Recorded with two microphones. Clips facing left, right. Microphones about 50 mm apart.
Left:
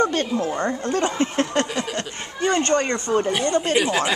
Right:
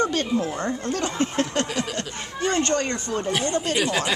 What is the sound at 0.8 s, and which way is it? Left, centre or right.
Speech, left.